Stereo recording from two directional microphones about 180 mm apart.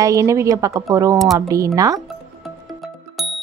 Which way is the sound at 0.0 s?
15° right (ahead or behind).